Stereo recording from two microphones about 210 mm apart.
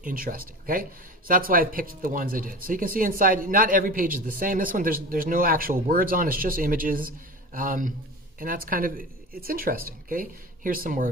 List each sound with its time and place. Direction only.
0.0 s speech: 40° right (ahead or behind)